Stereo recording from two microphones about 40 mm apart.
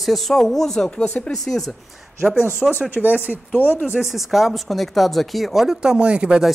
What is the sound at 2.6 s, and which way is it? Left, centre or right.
Speech, centre.